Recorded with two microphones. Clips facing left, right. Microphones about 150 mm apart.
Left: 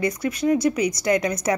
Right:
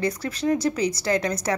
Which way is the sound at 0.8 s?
30° right (ahead or behind).